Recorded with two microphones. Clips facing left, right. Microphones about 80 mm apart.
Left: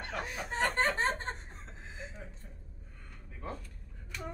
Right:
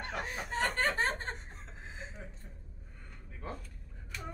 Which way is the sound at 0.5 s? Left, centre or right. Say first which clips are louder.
Left 2 dB; left.